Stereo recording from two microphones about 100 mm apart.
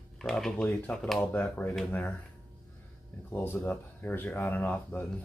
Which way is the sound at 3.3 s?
20° left (ahead or behind).